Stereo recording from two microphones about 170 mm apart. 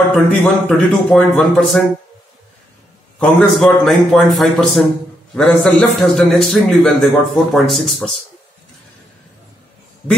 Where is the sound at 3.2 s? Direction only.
Centre (ahead or behind).